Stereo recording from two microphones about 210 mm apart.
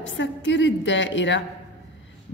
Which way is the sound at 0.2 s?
60° left (ahead or behind).